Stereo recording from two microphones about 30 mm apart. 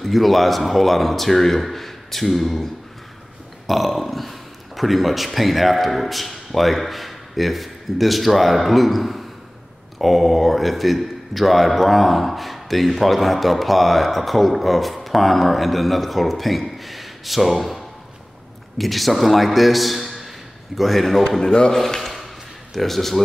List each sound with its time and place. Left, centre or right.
0.0 s a man's voice: centre
3.6 s a man's voice: centre
21.4 s speech: left
21.7 s speech: centre